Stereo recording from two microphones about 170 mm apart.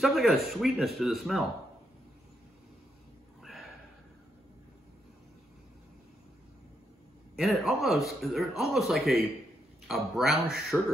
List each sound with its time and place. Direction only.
0.0 s a man's voice: centre (ahead or behind)
7.3 s a man's voice: centre (ahead or behind)